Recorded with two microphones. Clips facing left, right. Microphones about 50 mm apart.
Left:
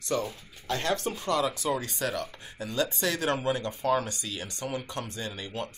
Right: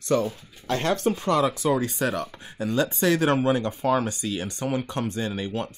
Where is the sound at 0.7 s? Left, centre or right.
Right.